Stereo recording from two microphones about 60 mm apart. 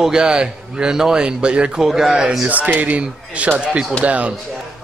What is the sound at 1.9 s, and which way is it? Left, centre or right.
Speech, centre.